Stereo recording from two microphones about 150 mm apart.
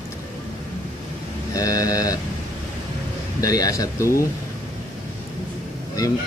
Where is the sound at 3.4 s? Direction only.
25° left (ahead or behind).